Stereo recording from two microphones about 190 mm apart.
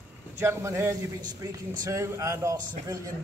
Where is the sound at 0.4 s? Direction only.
15° right (ahead or behind).